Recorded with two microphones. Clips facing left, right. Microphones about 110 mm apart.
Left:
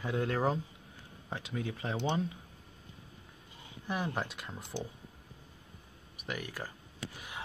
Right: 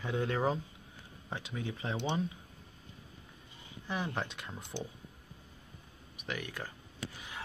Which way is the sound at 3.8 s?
5° left (ahead or behind).